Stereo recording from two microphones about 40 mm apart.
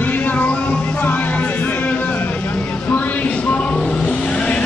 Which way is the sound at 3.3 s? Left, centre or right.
Left.